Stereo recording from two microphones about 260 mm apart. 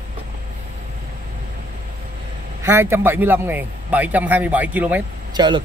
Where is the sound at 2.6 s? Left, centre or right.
Centre.